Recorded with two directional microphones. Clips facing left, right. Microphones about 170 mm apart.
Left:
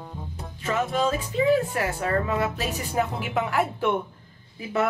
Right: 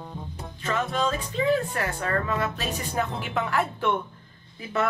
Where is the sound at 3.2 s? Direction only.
10° left (ahead or behind).